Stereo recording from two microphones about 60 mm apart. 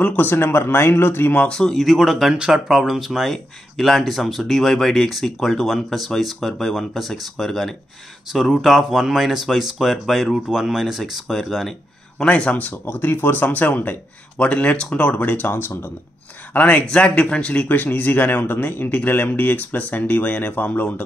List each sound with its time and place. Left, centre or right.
0.0 s speech: left
1.3 s speech: left
1.6 s speech: centre
12.2 s speech: centre
12.8 s speech: left
16.5 s speech: left